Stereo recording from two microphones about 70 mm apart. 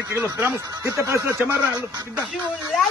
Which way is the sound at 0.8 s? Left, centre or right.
Right.